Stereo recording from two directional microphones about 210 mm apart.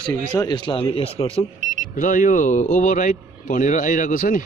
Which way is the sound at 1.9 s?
40° left (ahead or behind).